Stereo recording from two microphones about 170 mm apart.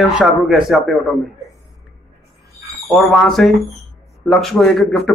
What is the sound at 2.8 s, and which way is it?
A man's voice, centre (ahead or behind).